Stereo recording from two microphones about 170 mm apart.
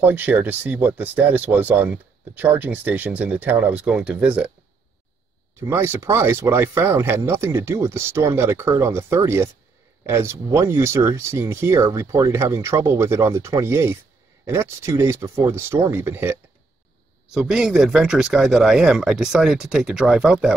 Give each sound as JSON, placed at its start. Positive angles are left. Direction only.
{"t": 0.0, "sound": "speech", "side_deg": -10}
{"t": 5.6, "sound": "speech", "side_deg": -15}